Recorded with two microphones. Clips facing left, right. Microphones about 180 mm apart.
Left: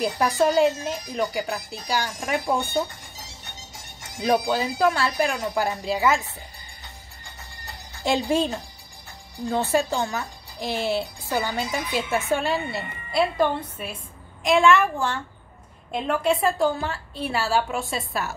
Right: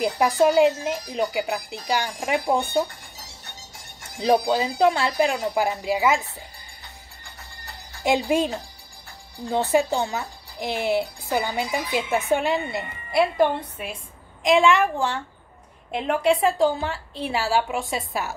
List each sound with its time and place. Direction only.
0.0 s a woman's voice: 20° right (ahead or behind)
4.5 s a woman's voice: 20° right (ahead or behind)
8.3 s a woman's voice: 15° right (ahead or behind)